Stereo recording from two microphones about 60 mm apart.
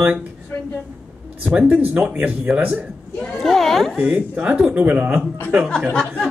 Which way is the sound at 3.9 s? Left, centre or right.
Right.